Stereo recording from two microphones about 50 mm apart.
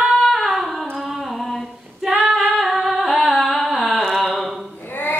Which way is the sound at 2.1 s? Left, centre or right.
Right.